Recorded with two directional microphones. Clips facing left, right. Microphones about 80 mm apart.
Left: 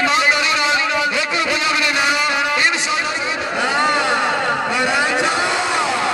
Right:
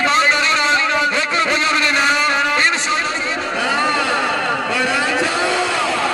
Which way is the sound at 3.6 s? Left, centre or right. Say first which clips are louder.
Left 1 dB; centre.